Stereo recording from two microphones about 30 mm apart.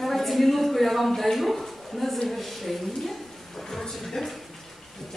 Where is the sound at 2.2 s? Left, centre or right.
Centre.